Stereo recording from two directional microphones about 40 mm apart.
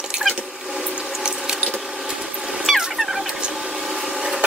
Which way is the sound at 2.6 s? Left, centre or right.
Centre.